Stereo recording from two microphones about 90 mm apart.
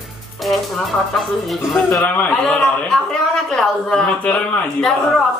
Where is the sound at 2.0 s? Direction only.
15° left (ahead or behind).